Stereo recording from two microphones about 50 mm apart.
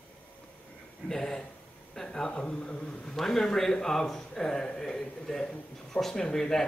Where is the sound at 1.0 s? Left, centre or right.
Centre.